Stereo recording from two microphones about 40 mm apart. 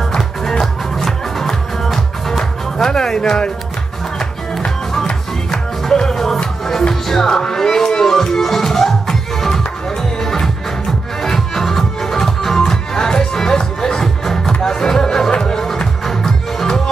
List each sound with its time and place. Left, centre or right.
0.1 s music: centre
4.6 s music: centre